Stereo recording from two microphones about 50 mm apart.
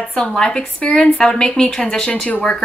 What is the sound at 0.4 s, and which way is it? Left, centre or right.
A woman's voice, centre.